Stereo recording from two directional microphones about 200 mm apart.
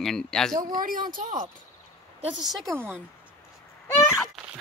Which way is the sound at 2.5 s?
20° right (ahead or behind).